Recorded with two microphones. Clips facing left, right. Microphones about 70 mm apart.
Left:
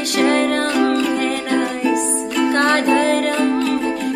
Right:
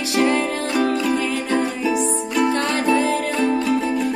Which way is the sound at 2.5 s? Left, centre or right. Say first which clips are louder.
Left 4 dB; left.